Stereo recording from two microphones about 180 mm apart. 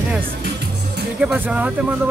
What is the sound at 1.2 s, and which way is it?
Speech, 5° right (ahead or behind).